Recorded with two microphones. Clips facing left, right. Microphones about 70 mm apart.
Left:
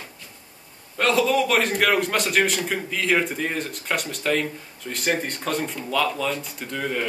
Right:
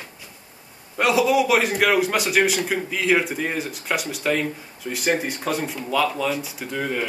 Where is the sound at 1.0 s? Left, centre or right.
Centre.